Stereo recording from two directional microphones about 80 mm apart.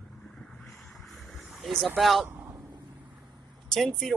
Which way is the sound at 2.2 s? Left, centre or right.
Right.